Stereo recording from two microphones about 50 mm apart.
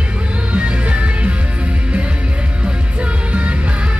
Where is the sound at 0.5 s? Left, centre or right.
Right.